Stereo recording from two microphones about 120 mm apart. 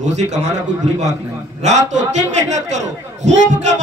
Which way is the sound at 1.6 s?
75° right (ahead or behind).